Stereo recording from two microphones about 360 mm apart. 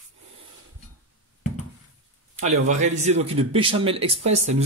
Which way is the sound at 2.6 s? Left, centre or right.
Centre.